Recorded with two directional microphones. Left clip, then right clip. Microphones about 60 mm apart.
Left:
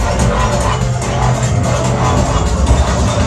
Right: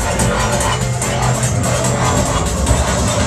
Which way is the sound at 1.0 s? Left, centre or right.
Centre.